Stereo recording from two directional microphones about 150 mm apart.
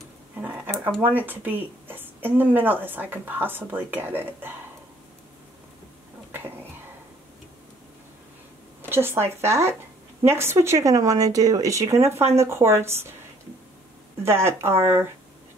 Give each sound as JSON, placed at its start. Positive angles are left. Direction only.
{"t": 0.4, "sound": "a sound", "side_deg": -10}
{"t": 1.0, "sound": "speech", "side_deg": -10}
{"t": 8.8, "sound": "speech", "side_deg": -15}
{"t": 14.2, "sound": "speech", "side_deg": -15}